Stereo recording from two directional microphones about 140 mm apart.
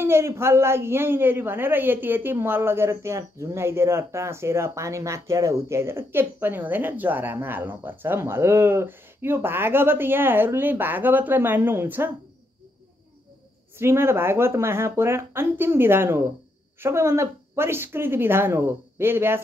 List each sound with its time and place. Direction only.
0.0 s a man's voice: 20° right (ahead or behind)
13.7 s a man's voice: 15° right (ahead or behind)